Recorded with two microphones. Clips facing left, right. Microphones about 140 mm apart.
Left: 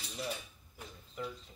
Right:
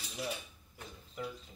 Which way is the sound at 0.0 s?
5° right (ahead or behind).